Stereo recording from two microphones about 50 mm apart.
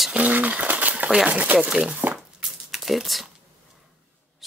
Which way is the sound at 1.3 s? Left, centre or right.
Right.